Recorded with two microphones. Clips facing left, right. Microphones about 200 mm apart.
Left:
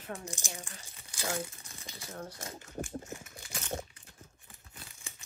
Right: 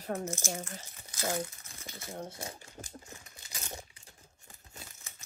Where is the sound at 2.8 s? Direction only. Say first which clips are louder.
Left 13 dB; 40° left (ahead or behind).